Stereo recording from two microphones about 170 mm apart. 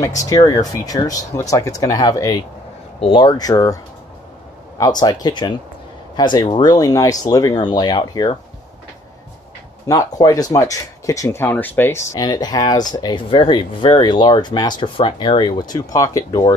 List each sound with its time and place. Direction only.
0.0 s speech: 20° left (ahead or behind)
9.8 s speech: 20° left (ahead or behind)